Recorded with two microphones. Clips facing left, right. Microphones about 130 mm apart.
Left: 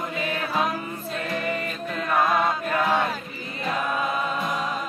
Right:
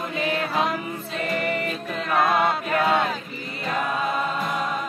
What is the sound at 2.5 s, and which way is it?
Chant, 75° right (ahead or behind).